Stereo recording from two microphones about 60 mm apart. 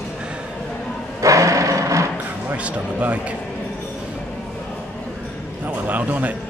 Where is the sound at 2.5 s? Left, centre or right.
Right.